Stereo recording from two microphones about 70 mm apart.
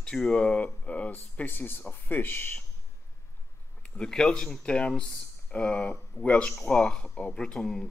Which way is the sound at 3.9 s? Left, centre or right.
Centre.